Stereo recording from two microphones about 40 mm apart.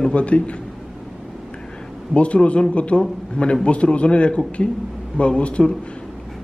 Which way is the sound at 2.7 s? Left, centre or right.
Left.